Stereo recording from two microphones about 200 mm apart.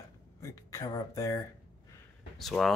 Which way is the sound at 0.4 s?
15° left (ahead or behind).